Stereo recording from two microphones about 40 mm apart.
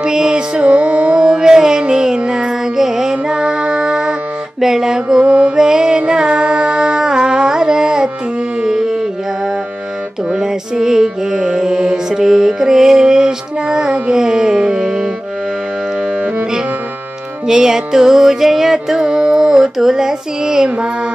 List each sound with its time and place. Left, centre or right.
0.0 s music: centre
0.6 s music: right
1.2 s music: right
3.4 s music: right
4.6 s music: centre
5.2 s mantra: right
5.6 s music: right
7.1 s carnatic music: centre
8.6 s music: centre
10.4 s music: centre
17.5 s music: centre
19.0 s child singing: right